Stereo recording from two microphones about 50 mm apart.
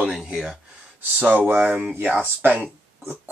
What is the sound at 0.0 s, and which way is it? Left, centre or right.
Speech, centre.